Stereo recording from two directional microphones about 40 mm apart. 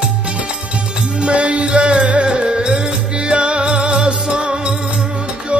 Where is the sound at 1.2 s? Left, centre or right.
Right.